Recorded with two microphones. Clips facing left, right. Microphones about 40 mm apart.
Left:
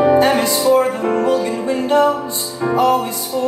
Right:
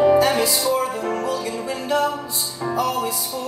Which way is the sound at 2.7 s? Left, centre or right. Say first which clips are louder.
Left 9 dB; left.